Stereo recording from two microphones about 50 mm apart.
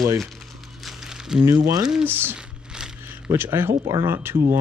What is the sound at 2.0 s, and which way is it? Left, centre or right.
Speech, right.